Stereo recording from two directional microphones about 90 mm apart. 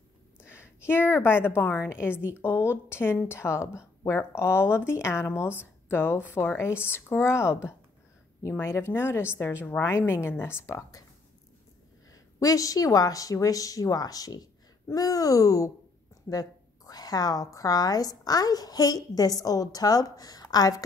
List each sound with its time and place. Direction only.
0.5 s a sound: 25° left (ahead or behind)
1.1 s speech: 25° left (ahead or behind)
8.5 s speech: 30° left (ahead or behind)
12.1 s a woman's voice: 40° left (ahead or behind)